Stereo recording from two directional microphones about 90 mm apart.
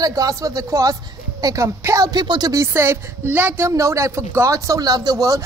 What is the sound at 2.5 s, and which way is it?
A woman's voice, 30° right (ahead or behind).